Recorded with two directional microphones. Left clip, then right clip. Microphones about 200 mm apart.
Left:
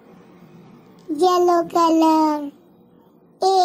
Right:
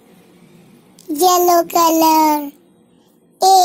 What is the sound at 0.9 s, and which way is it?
A child's voice, 35° right (ahead or behind).